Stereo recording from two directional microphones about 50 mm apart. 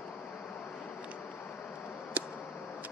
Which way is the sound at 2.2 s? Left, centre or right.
Right.